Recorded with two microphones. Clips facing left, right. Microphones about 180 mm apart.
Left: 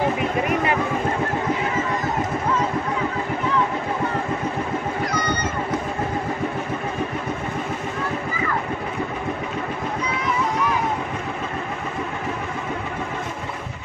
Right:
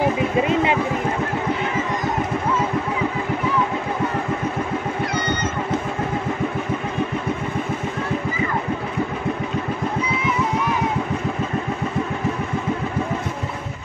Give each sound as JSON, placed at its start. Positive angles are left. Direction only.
{"t": 0.0, "sound": "speech", "side_deg": -20}
{"t": 5.1, "sound": "cat", "side_deg": -25}